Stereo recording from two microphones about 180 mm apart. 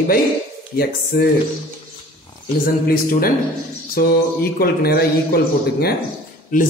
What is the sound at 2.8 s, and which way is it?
A man's voice, 55° left (ahead or behind).